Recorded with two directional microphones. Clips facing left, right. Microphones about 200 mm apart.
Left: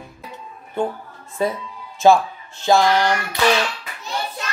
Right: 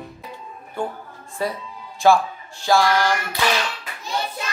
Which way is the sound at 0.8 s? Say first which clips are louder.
Left 4 dB; 20° left (ahead or behind).